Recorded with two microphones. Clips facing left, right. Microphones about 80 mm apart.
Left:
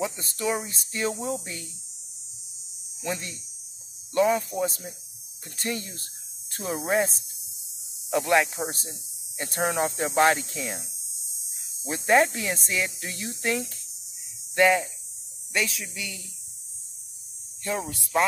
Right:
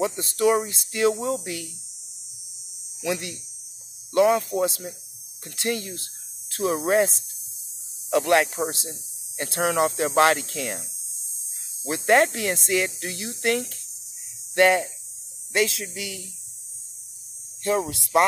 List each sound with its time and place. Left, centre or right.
0.0 s speech: right
3.0 s hum: right
4.1 s speech: right
5.6 s speech: right
9.4 s speech: right
11.9 s speech: right
14.5 s cricket: right
15.5 s speech: right
17.6 s speech: right